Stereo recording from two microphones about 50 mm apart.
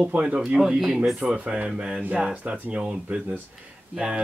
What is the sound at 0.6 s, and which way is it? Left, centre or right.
Speech, centre.